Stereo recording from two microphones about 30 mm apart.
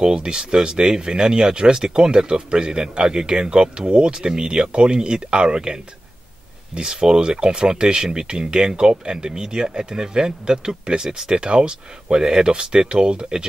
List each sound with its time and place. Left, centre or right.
0.0 s speech: right